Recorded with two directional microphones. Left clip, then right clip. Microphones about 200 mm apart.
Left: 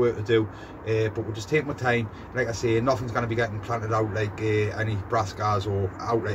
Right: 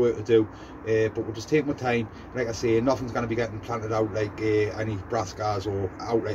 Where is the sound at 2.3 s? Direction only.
Centre (ahead or behind).